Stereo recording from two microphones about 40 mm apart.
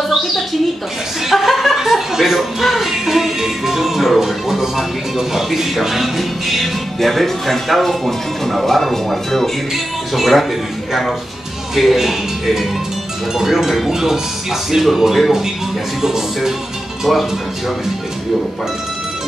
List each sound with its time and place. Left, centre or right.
1.3 s speech: centre
17.0 s speech: centre